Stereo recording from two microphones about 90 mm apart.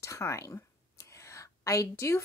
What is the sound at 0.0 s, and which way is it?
A woman's voice, 35° left (ahead or behind).